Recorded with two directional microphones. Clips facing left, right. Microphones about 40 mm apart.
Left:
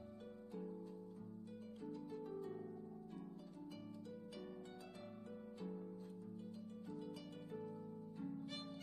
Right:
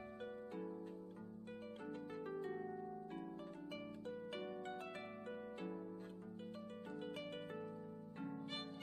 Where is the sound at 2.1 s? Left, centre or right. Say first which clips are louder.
Right 4 dB; right.